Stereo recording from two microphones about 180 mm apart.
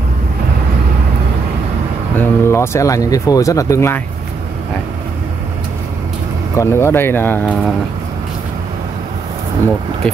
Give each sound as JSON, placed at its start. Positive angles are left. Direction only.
{"t": 2.1, "sound": "speech", "side_deg": 15}
{"t": 6.5, "sound": "speech", "side_deg": 15}